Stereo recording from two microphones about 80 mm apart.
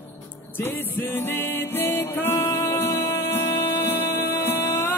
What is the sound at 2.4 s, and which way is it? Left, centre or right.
Music, left.